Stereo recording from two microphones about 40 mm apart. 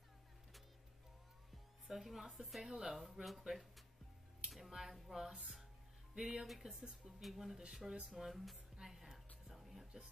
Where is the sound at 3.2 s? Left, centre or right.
Centre.